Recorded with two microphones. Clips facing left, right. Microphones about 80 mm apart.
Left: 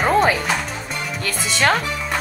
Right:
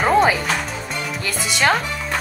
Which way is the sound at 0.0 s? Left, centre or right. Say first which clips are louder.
Right 1 dB; centre.